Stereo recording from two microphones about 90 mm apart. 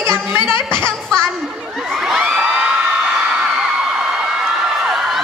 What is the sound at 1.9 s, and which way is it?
Crowd, 5° right (ahead or behind).